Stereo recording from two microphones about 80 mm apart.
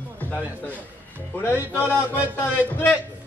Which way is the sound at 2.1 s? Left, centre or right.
Left.